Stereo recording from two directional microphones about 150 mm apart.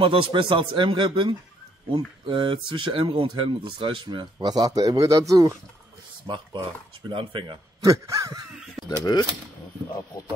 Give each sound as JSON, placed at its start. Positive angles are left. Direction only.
{"t": 0.0, "sound": "speech", "side_deg": -35}
{"t": 8.8, "sound": "speech", "side_deg": 25}